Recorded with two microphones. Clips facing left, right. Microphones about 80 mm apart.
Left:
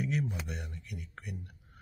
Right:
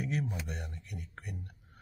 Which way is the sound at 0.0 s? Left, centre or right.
Right.